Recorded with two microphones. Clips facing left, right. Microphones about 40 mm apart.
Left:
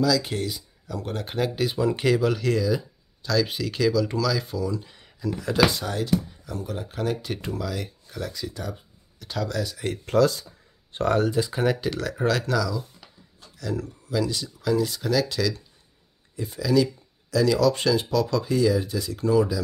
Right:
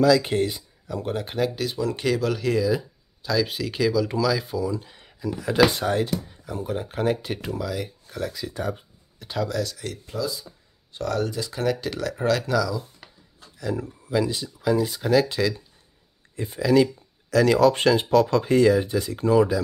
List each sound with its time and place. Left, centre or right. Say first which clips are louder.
0.0 s speech: right 5 dB; right
0.8 s speech: right 3 dB; centre
1.2 s speech: left 3 dB; centre
2.0 s speech: even; centre
5.7 s speech: right 4 dB; right
6.4 s speech: right 3 dB; right
7.2 s speech: right 1 dB; centre
9.5 s speech: right 2 dB; centre
10.0 s speech: left 10 dB; left
10.9 s speech: left 4 dB; left
11.1 s speech: left 4 dB; left
12.0 s speech: right 1 dB; centre
13.6 s speech: right 2 dB; centre
17.3 s speech: right 3 dB; right